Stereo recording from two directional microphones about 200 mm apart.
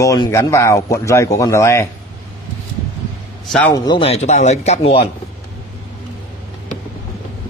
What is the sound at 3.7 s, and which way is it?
A man's voice, 20° left (ahead or behind).